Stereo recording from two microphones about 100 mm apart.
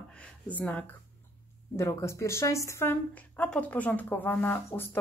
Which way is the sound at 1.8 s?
25° left (ahead or behind).